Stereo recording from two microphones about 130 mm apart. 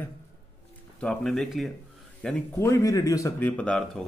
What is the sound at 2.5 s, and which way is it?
Speech, 25° left (ahead or behind).